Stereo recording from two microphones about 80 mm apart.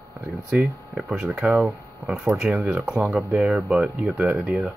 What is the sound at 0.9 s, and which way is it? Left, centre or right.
Speech, centre.